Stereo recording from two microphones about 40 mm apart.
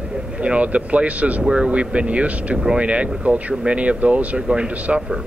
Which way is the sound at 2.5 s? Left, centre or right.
Right.